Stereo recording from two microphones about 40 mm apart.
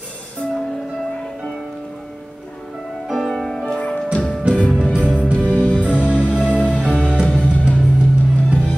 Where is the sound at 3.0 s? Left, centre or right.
Centre.